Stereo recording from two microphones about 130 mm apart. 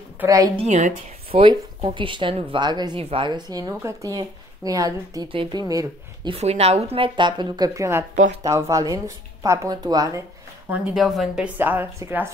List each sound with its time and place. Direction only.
0.2 s a woman's voice: 15° right (ahead or behind)
0.6 s a woman's voice: 65° right (ahead or behind)
1.3 s speech: 45° right (ahead or behind)
3.0 s speech: 45° right (ahead or behind); by 5.3 s 30° right (ahead or behind)
5.3 s speech: 40° right (ahead or behind)
6.3 s speech: 55° right (ahead or behind); by 10.2 s 30° right (ahead or behind)
11.0 s a woman's voice: centre (ahead or behind); by 12.3 s 15° right (ahead or behind)